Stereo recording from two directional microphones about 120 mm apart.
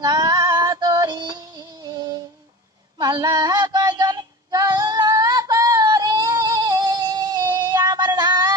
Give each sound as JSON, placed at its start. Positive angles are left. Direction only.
{"t": 0.0, "sound": "female singing", "side_deg": -30}
{"t": 3.0, "sound": "female singing", "side_deg": -30}